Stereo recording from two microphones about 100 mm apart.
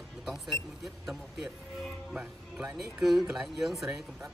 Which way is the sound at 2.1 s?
10° right (ahead or behind).